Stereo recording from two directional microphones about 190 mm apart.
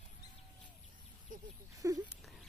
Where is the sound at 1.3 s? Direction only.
45° right (ahead or behind).